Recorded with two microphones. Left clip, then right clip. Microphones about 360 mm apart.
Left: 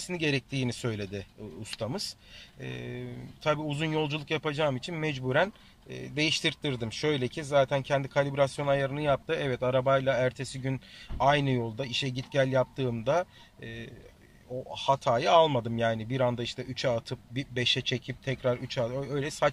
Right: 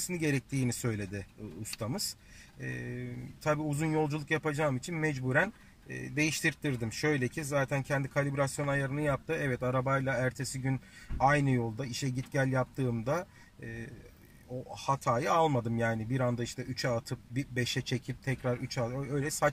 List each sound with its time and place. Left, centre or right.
0.6 s speech: centre
5.9 s speech: left
6.7 s speech: centre
14.9 s speech: centre